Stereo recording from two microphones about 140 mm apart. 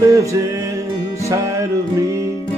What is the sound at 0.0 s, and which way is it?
Music, 25° right (ahead or behind).